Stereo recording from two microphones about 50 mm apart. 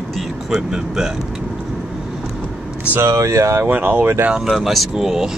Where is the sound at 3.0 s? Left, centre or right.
Right.